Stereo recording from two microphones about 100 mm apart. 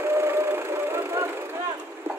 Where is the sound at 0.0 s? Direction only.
25° right (ahead or behind).